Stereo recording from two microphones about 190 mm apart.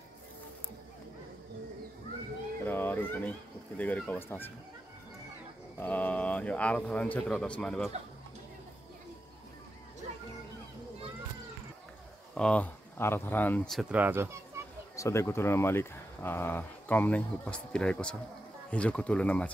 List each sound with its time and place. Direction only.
2.6 s speech: 10° left (ahead or behind)
5.8 s speech: 10° left (ahead or behind)
12.4 s speech: 5° left (ahead or behind); by 14.3 s 10° right (ahead or behind)
15.0 s speech: 15° left (ahead or behind)